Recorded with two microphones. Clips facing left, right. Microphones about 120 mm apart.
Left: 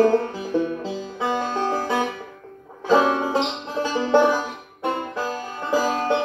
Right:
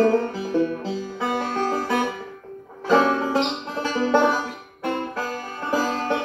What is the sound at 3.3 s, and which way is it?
Banjo, 20° left (ahead or behind).